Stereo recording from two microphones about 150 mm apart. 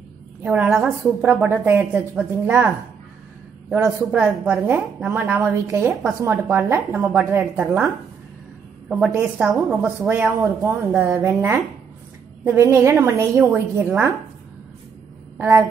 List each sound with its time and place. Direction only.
0.4 s a woman's voice: 10° right (ahead or behind)
3.7 s a woman's voice: 10° right (ahead or behind)
8.8 s a woman's voice: 10° right (ahead or behind)
15.3 s speech: 15° right (ahead or behind)